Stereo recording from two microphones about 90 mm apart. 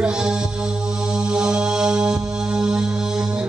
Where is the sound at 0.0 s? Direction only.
10° right (ahead or behind).